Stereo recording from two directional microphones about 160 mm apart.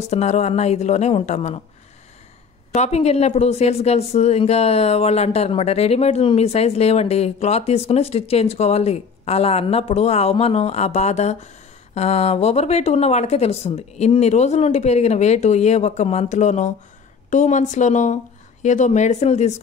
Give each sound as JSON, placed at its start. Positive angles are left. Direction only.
{"t": 0.0, "sound": "speech", "side_deg": 45}
{"t": 2.7, "sound": "speech", "side_deg": 45}